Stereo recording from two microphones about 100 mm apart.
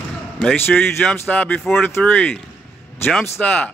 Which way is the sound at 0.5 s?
20° left (ahead or behind).